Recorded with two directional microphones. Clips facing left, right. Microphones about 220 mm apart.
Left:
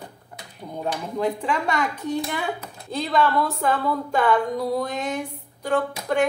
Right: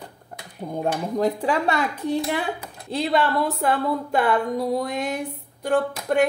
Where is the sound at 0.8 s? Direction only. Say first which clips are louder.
Right 3 dB; 35° right (ahead or behind).